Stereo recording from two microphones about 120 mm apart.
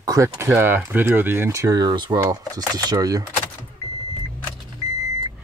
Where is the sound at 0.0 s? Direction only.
30° right (ahead or behind).